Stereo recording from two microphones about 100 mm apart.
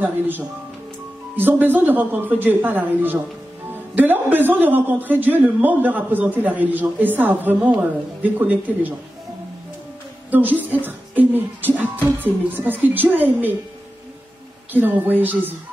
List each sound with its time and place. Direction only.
0.0 s a woman's voice: 20° right (ahead or behind)
10.3 s a woman's voice: 15° right (ahead or behind)
14.7 s a woman's voice: 20° right (ahead or behind)